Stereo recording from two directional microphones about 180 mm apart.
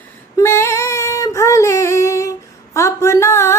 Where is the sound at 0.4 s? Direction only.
15° left (ahead or behind).